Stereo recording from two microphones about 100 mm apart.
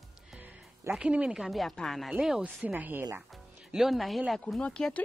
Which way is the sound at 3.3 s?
Centre (ahead or behind).